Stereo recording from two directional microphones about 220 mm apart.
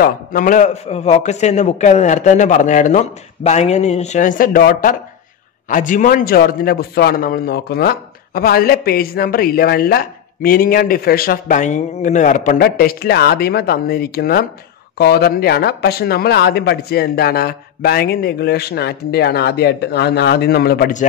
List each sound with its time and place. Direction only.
0.0 s a man's voice: 40° left (ahead or behind)